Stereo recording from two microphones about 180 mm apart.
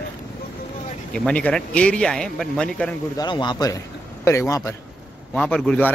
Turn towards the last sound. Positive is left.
turn(degrees=5)  # may be behind; listen again after turning